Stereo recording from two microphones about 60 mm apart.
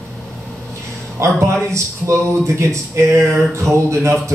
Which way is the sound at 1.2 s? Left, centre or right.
Right.